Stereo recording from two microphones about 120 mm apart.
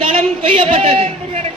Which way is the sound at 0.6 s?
55° right (ahead or behind).